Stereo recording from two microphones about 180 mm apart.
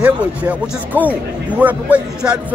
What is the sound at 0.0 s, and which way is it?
Speech, 10° right (ahead or behind).